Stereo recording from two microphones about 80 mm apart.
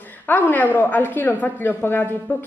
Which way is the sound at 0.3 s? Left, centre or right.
Left.